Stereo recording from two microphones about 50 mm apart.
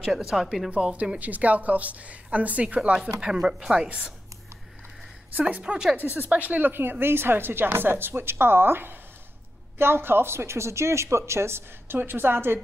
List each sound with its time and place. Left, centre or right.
0.1 s speech: centre
0.7 s a woman's voice: right
5.4 s a woman's voice: right
6.1 s a woman's voice: right
12.0 s a woman's voice: right